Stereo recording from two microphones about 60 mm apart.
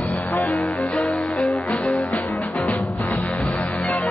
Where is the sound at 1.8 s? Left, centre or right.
Left.